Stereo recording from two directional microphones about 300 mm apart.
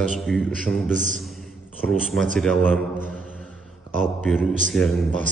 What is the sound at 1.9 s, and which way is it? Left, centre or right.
A man's voice, centre.